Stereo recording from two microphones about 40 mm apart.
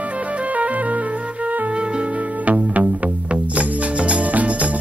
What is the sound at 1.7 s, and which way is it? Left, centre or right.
Music, right.